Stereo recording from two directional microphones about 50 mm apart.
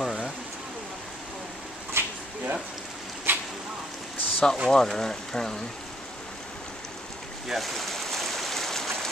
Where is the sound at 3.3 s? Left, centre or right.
Right.